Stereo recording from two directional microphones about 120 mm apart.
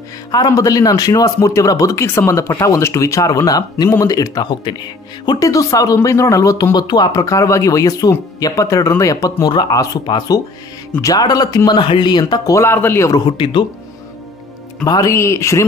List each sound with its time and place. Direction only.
0.3 s speech: 30° left (ahead or behind)
13.2 s speech: 40° left (ahead or behind)
14.9 s speech: 25° left (ahead or behind)